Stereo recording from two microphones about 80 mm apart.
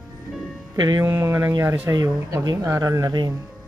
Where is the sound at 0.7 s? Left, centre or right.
Right.